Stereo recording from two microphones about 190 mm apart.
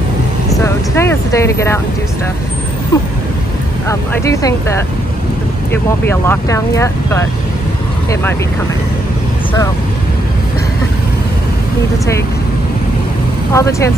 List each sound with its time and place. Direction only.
0.5 s speech: 15° left (ahead or behind)
2.9 s vehicle: 20° left (ahead or behind)
3.9 s speech: 15° left (ahead or behind)
13.5 s speech: 15° left (ahead or behind)